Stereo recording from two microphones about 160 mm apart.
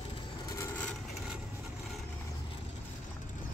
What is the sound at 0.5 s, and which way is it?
Vehicle, 15° left (ahead or behind).